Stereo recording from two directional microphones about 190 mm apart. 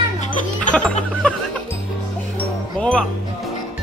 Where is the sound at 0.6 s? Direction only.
5° left (ahead or behind).